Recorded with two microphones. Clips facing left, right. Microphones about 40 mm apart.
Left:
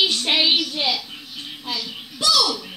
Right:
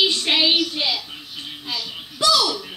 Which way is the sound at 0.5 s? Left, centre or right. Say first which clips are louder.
Right 1 dB; centre.